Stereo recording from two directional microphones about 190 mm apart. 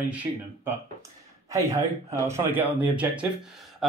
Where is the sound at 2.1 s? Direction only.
15° right (ahead or behind).